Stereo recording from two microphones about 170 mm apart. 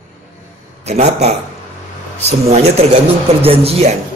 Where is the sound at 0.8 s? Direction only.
40° right (ahead or behind).